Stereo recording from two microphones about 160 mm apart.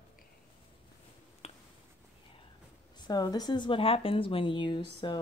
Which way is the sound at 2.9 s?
25° left (ahead or behind).